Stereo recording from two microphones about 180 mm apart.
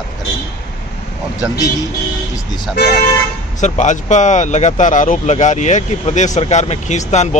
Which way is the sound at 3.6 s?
40° left (ahead or behind).